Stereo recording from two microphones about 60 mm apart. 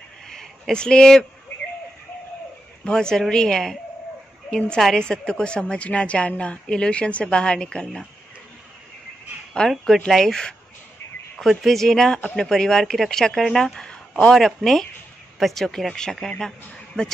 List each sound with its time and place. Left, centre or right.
0.3 s a sound: centre
2.8 s a woman's voice: centre
9.7 s a woman's voice: centre
13.7 s speech: centre
14.3 s a woman's voice: centre